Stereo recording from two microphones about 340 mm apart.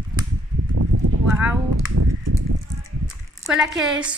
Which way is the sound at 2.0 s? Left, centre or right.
Right.